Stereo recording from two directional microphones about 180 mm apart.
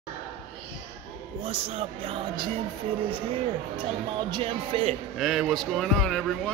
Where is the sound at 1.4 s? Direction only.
35° right (ahead or behind).